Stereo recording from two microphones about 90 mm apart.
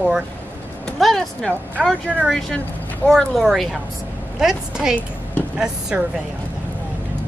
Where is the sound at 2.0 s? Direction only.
15° right (ahead or behind).